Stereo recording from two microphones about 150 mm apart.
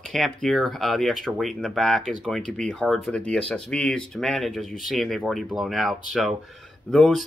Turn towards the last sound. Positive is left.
turn(degrees=0)  # may be behind; listen again after turning